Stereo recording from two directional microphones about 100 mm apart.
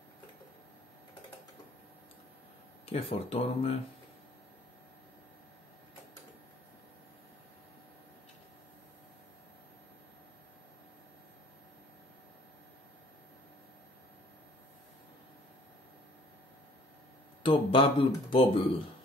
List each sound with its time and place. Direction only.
2.9 s speech: 75° left (ahead or behind)
17.4 s a sound: 60° left (ahead or behind)
17.9 s speech: 70° left (ahead or behind)